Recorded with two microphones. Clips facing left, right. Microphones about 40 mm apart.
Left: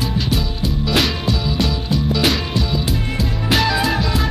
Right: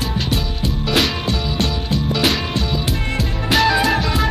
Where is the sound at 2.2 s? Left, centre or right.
Centre.